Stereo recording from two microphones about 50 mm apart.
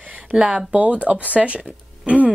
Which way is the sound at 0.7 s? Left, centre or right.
Right.